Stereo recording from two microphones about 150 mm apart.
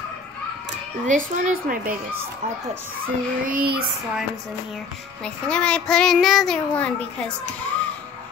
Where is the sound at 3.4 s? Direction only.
80° right.